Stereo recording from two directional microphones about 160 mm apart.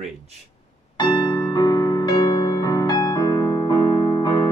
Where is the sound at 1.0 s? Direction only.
25° left (ahead or behind).